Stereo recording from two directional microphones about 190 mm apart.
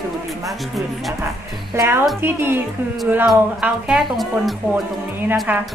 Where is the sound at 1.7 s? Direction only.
15° right (ahead or behind).